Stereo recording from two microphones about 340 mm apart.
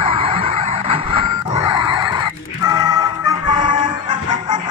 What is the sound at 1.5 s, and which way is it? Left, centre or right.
Music, centre.